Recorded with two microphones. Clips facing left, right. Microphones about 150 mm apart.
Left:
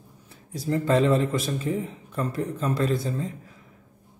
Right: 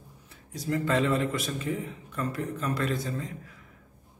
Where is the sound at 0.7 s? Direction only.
30° left (ahead or behind).